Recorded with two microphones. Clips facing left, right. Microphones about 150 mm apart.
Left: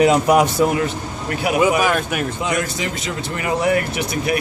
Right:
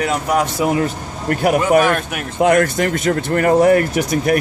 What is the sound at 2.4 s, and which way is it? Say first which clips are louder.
Speech: right 8 dB; 55° right (ahead or behind).